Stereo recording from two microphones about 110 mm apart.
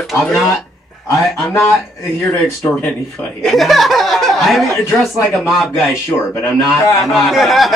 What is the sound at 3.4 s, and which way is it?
Speech, centre (ahead or behind).